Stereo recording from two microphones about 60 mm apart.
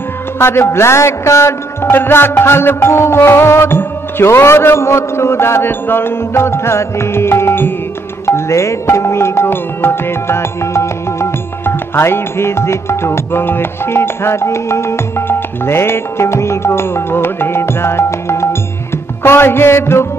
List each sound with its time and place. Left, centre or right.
0.4 s music: left
8.3 s music: left